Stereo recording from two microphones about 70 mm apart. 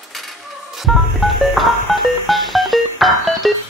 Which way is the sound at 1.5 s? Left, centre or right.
Centre.